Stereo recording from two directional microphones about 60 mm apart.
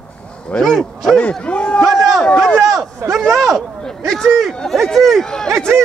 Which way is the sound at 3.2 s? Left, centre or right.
Centre.